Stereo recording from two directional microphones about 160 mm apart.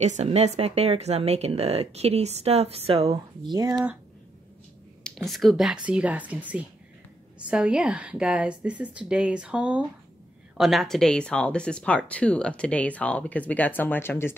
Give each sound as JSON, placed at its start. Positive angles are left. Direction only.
{"t": 0.0, "sound": "a woman's voice", "side_deg": -45}
{"t": 3.1, "sound": "speech", "side_deg": -25}
{"t": 5.0, "sound": "a woman's voice", "side_deg": 0}